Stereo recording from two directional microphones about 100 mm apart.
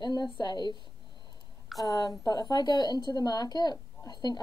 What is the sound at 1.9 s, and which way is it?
Speech, 40° left (ahead or behind).